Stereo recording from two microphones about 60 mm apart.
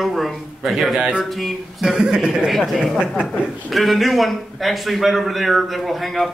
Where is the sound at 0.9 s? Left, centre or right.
Centre.